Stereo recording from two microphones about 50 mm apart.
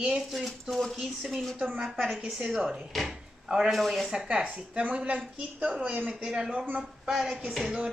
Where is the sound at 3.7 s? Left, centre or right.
Centre.